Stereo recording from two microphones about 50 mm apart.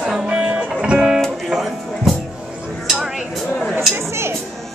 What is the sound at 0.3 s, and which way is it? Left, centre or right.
Music, centre.